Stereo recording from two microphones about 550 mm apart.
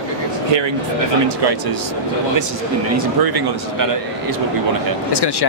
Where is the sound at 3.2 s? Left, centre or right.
Right.